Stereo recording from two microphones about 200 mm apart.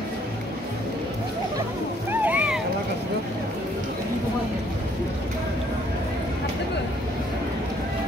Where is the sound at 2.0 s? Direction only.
10° right (ahead or behind).